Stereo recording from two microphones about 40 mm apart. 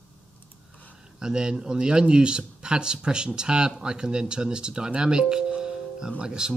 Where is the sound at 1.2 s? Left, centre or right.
Centre.